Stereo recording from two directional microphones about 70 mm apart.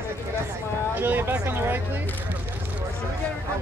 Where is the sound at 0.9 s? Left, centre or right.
Right.